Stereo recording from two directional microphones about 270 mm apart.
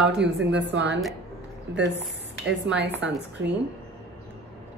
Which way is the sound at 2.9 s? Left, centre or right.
Centre.